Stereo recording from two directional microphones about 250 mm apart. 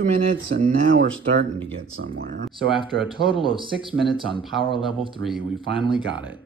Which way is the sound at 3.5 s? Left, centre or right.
Centre.